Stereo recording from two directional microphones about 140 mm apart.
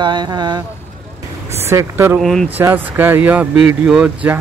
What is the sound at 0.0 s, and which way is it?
Speech, 30° right (ahead or behind).